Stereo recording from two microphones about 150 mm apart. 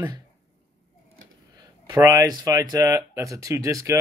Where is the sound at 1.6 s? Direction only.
20° right (ahead or behind).